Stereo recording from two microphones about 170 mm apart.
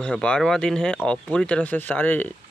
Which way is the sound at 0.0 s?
5° left (ahead or behind).